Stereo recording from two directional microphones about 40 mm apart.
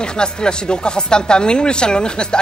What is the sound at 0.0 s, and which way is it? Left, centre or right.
A woman's voice, left.